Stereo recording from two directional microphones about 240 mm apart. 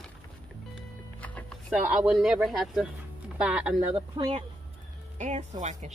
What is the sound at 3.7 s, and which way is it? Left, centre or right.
Speech, right.